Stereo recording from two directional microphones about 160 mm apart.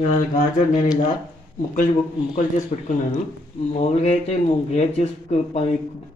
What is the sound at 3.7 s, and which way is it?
Speech, 45° left (ahead or behind).